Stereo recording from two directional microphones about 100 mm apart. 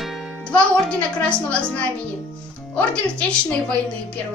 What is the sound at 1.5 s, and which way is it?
Speech, 10° left (ahead or behind).